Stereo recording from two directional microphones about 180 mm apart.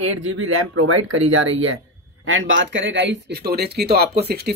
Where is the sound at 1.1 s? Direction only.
90° right.